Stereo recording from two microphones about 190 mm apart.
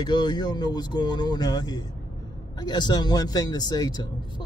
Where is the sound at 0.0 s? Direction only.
25° left (ahead or behind).